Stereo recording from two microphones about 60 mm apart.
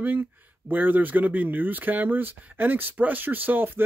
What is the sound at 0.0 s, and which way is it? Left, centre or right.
Speech, right.